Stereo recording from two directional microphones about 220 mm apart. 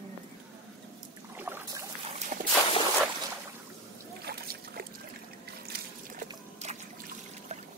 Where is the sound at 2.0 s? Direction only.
30° right (ahead or behind).